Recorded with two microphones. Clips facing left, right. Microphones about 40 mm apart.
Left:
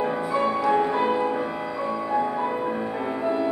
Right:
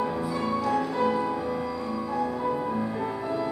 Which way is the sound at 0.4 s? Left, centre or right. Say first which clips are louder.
Left 6 dB; left.